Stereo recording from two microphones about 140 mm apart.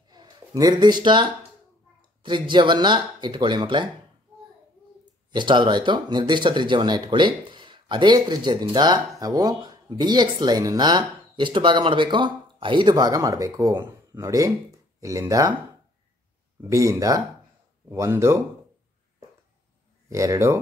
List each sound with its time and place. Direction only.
0.1 s speech: 25° right (ahead or behind)
5.3 s speech: 35° right (ahead or behind)
16.6 s speech: 20° right (ahead or behind)
20.1 s speech: 20° right (ahead or behind)